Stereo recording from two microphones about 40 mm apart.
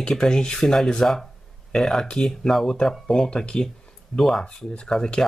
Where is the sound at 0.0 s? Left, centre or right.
Centre.